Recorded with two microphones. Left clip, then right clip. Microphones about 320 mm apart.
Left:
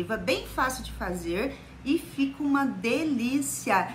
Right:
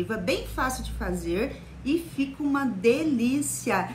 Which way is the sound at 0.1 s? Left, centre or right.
Centre.